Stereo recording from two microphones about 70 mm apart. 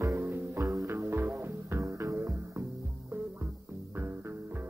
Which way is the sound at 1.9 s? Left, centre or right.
Right.